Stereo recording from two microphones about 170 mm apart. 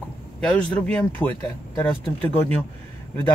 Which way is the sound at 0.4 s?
5° left (ahead or behind).